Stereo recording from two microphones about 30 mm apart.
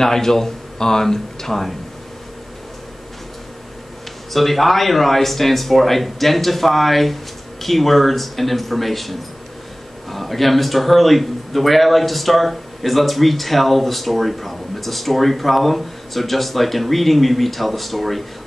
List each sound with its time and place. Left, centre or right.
0.0 s speech: centre
4.3 s a man's voice: centre